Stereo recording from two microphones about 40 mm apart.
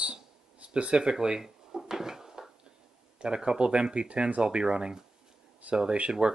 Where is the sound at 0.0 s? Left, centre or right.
Right.